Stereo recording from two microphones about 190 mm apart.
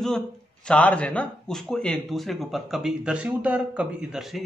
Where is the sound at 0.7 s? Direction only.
5° left (ahead or behind).